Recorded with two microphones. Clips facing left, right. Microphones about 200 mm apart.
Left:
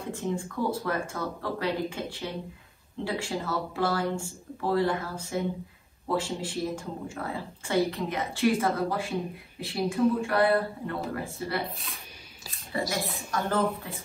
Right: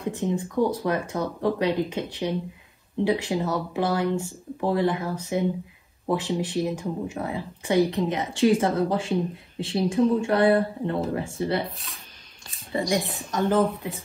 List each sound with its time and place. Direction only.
0.1 s speech: 20° right (ahead or behind)
11.7 s speech: centre (ahead or behind)
12.7 s speech: 20° right (ahead or behind)